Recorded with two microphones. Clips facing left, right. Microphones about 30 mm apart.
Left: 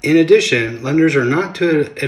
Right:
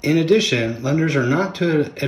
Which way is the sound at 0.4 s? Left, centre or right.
Left.